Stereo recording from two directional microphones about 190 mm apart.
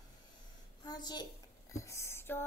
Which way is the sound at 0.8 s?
20° left (ahead or behind).